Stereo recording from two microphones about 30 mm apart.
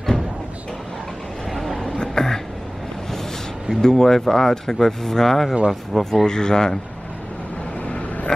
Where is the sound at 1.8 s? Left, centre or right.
Left.